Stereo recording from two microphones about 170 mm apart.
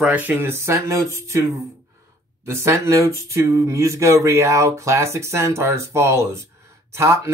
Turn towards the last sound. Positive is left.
turn(degrees=-15)  # may be behind; listen again after turning